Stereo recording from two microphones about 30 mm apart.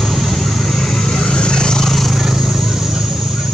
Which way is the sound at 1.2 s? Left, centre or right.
Left.